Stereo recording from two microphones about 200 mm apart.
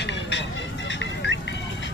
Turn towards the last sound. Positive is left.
turn(degrees=65)  # may be behind; listen again after turning